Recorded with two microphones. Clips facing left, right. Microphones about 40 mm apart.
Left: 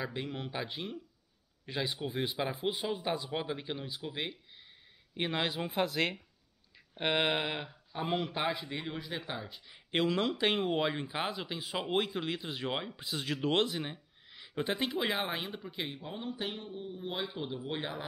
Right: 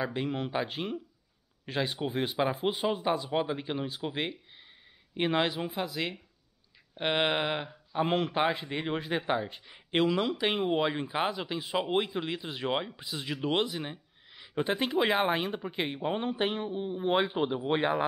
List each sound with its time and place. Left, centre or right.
0.0 s speech: centre
0.3 s speech: right; by 6.1 s centre
7.0 s speech: centre
10.2 s speech: centre
14.5 s speech: centre
16.0 s speech: right